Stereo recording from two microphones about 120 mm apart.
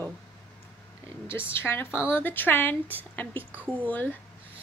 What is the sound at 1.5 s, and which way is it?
Speech, 20° left (ahead or behind).